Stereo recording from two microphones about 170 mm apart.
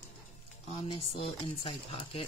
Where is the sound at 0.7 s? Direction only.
35° left (ahead or behind).